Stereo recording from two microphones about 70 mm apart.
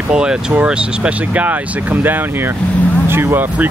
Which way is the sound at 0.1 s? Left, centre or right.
Centre.